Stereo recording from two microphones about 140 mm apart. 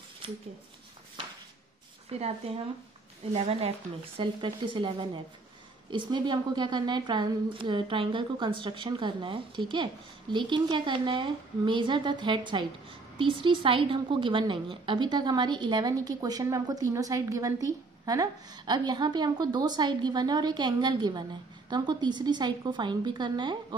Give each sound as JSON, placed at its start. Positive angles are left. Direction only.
{"t": 2.0, "sound": "speech", "side_deg": -50}
{"t": 4.2, "sound": "a woman's voice", "side_deg": -35}